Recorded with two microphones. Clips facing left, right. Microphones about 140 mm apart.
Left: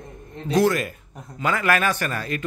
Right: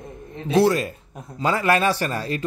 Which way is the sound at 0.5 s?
30° right (ahead or behind).